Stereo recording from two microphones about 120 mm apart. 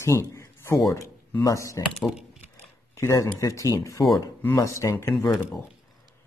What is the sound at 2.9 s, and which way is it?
Speech, 25° left (ahead or behind).